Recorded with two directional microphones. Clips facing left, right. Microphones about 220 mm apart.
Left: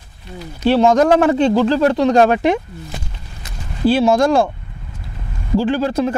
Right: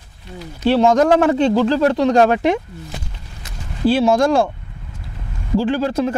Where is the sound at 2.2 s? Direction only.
15° left (ahead or behind).